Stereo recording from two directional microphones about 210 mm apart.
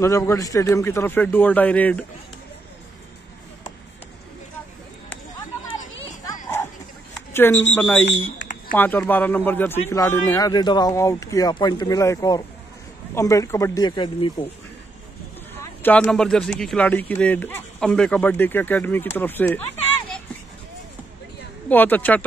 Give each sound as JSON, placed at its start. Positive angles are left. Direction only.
{"t": 0.0, "sound": "speech", "side_deg": 15}
{"t": 7.3, "sound": "speech", "side_deg": 10}
{"t": 8.4, "sound": "a sound", "side_deg": 55}
{"t": 8.7, "sound": "speech", "side_deg": 10}
{"t": 15.6, "sound": "speech", "side_deg": 10}
{"t": 21.6, "sound": "speech", "side_deg": 10}